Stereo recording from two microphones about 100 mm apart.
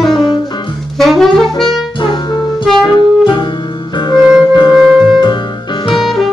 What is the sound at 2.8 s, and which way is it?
Music, 45° left (ahead or behind).